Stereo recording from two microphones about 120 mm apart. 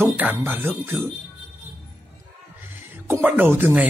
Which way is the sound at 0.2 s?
15° right (ahead or behind).